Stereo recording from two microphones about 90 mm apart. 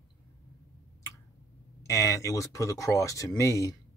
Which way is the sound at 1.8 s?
35° left (ahead or behind).